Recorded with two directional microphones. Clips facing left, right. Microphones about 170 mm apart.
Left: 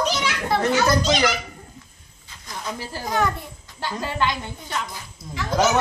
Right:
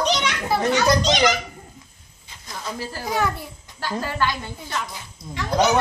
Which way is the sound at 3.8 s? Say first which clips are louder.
Right 1 dB; 20° left (ahead or behind).